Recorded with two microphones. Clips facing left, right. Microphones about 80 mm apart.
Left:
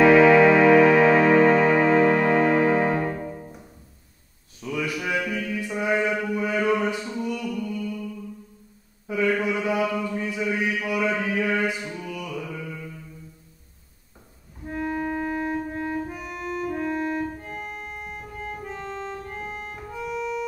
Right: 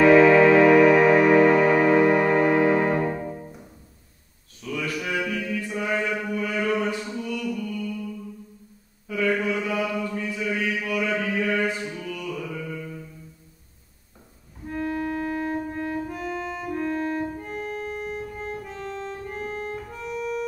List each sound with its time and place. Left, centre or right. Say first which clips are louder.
0.1 s music: even; centre
0.9 s music: even; centre
1.4 s music: even; left
1.7 s music: even; centre
2.6 s music: right 1 dB; centre
3.3 s music: even; centre
4.6 s mantra: left 1 dB; centre
6.0 s a sound: left 2 dB; centre
7.3 s music: even; centre
9.0 s mantra: left 1 dB; left
11.3 s music: even; centre
12.4 s music: even; centre
14.7 s music: even; centre